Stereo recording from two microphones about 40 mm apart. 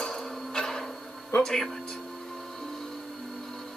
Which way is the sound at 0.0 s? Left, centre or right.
Centre.